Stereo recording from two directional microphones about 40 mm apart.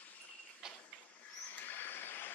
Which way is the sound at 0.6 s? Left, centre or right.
Centre.